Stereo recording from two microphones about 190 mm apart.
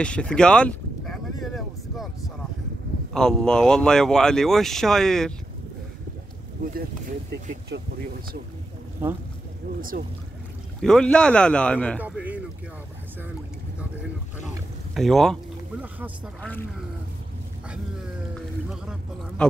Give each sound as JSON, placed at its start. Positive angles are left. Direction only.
{"t": 0.0, "sound": "a sound", "side_deg": 5}
{"t": 3.1, "sound": "speech", "side_deg": 5}
{"t": 6.6, "sound": "speech", "side_deg": -50}
{"t": 9.0, "sound": "a man's voice", "side_deg": -10}
{"t": 9.8, "sound": "speech", "side_deg": -45}
{"t": 10.8, "sound": "speech", "side_deg": 5}
{"t": 12.0, "sound": "a man's voice", "side_deg": -10}
{"t": 15.0, "sound": "speech", "side_deg": 0}
{"t": 16.3, "sound": "speech", "side_deg": 10}
{"t": 18.3, "sound": "a sound", "side_deg": 0}